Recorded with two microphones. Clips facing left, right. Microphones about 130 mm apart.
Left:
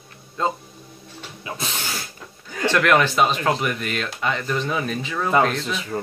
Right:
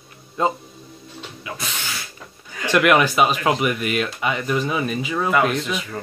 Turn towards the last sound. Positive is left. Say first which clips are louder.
# even
turn(degrees=-5)  # may be behind; listen again after turning